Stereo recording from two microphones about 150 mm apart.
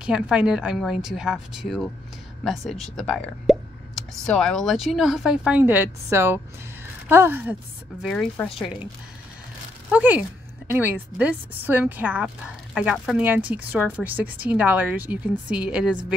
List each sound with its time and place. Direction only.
0.0 s a woman's voice: 5° right (ahead or behind)
8.0 s speech: 5° left (ahead or behind)
9.8 s a woman's voice: 10° right (ahead or behind)